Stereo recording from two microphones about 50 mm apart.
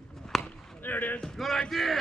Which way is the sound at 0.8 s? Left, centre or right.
Left.